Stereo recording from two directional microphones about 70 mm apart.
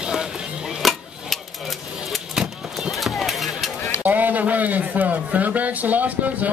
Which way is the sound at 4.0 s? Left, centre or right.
Right.